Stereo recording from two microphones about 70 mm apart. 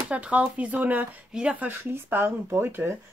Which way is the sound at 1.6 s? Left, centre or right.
Right.